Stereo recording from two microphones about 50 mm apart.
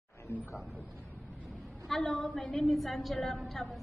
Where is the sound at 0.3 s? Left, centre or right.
Left.